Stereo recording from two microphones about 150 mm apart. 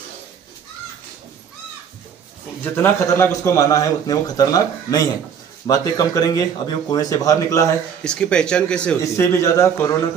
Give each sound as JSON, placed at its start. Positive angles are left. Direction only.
{"t": 2.6, "sound": "a man's voice", "side_deg": 15}
{"t": 8.0, "sound": "speech", "side_deg": 5}
{"t": 9.0, "sound": "a man's voice", "side_deg": 20}